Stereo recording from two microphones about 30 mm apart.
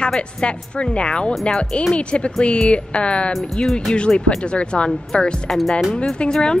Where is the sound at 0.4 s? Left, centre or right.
Left.